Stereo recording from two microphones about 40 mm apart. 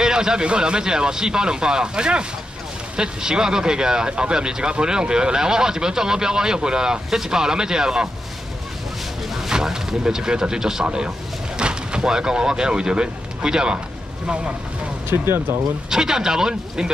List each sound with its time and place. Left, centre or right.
0.0 s speech: centre
9.5 s speech: centre
15.0 s speech: right
15.9 s speech: centre